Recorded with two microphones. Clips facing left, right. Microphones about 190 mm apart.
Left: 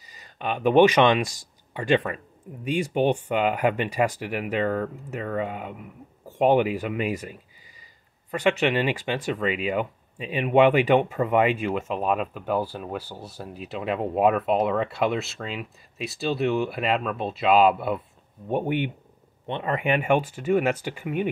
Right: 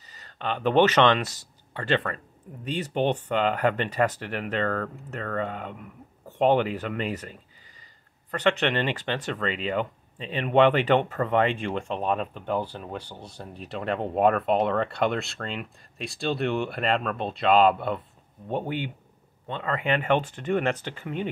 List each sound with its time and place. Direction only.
0.1 s speech: 10° left (ahead or behind)